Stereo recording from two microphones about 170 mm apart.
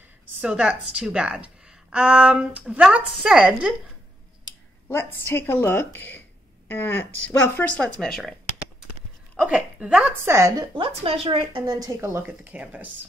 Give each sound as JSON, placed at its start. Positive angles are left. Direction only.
{"t": 0.4, "sound": "a woman's voice", "side_deg": -5}
{"t": 4.8, "sound": "a woman's voice", "side_deg": 15}
{"t": 9.5, "sound": "a woman's voice", "side_deg": -5}
{"t": 10.8, "sound": "a woman's voice", "side_deg": -35}